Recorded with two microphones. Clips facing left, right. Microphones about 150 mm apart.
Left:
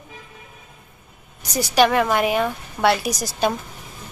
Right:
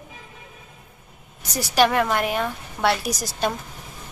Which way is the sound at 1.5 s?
Centre (ahead or behind).